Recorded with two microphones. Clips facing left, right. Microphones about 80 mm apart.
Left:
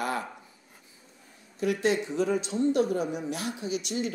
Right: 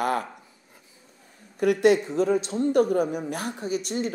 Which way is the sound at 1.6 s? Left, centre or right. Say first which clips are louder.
Right 7 dB; right.